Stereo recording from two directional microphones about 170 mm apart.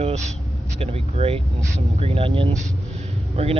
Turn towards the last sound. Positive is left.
turn(degrees=-35)  # may be behind; listen again after turning